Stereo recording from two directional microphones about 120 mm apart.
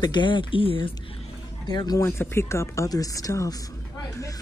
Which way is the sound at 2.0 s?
20° left (ahead or behind).